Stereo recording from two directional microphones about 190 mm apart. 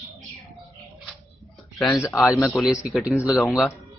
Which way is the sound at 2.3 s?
Centre (ahead or behind).